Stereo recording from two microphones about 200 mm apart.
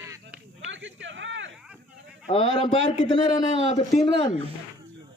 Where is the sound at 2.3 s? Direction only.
30° left (ahead or behind).